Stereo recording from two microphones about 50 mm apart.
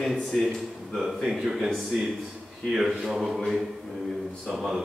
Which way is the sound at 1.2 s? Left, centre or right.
Right.